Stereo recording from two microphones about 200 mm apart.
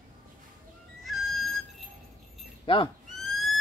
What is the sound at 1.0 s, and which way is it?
Music, centre (ahead or behind).